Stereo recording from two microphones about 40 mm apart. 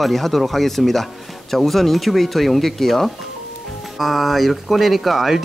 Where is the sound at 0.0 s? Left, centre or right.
Centre.